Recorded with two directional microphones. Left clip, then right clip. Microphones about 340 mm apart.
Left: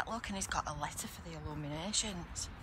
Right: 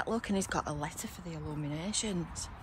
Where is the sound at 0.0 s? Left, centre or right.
Centre.